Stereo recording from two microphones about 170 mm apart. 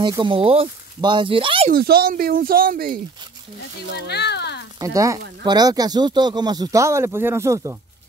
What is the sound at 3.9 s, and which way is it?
Speech, 75° left (ahead or behind).